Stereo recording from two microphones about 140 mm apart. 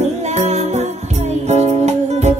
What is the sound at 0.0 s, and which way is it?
Music, 55° right (ahead or behind).